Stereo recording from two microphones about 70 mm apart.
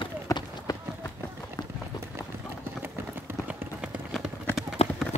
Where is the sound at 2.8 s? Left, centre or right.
Right.